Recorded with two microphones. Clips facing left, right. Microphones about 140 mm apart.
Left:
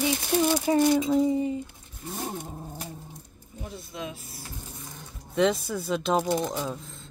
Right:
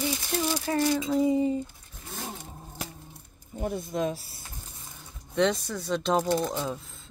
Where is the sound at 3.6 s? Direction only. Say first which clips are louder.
Right 8 dB; 55° right (ahead or behind).